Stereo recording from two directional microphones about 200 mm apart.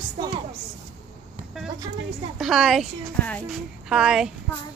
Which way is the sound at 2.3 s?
Centre (ahead or behind).